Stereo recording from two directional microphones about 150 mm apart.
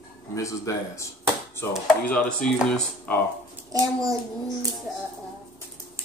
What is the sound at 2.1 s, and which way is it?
Speech, 5° left (ahead or behind).